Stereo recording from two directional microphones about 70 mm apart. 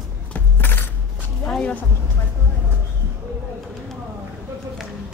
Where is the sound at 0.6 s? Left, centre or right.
Left.